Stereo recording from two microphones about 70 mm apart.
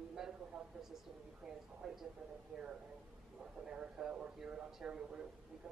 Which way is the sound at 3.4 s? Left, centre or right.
Centre.